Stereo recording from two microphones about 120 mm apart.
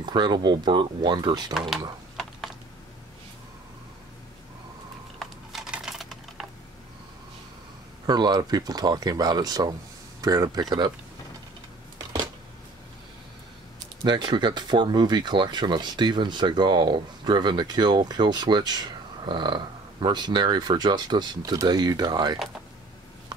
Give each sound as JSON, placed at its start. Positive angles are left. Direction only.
{"t": 0.0, "sound": "speech", "side_deg": -40}
{"t": 5.2, "sound": "typing", "side_deg": -5}
{"t": 8.1, "sound": "speech", "side_deg": -35}
{"t": 14.0, "sound": "speech", "side_deg": -40}